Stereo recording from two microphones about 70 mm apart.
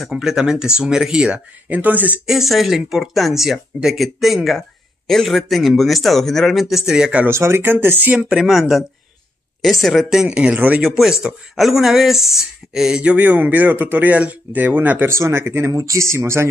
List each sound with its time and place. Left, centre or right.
0.0 s speech: centre
1.8 s speech: right
2.2 s a man's voice: centre
7.2 s speech: right
8.3 s a man's voice: centre
10.0 s speech: centre
10.8 s a man's voice: centre
13.2 s speech: right
15.1 s speech: right
15.7 s speech: right